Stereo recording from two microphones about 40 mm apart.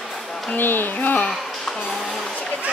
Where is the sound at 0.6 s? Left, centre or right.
Left.